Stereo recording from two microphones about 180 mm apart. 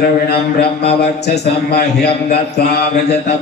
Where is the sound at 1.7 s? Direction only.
65° left (ahead or behind).